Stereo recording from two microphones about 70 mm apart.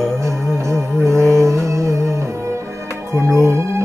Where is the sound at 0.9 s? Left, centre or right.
Right.